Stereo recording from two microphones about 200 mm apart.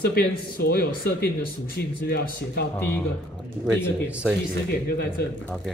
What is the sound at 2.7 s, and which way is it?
Speech, 10° left (ahead or behind).